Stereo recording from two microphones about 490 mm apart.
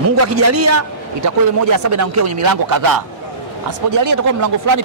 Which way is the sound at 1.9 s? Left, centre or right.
Right.